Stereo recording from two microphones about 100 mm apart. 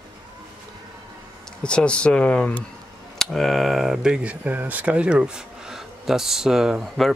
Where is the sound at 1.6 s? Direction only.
10° left (ahead or behind).